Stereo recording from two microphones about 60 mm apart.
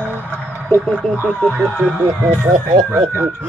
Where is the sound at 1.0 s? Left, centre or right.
Centre.